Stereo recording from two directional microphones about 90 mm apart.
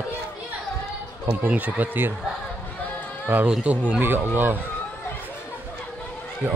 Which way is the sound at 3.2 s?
20° right (ahead or behind).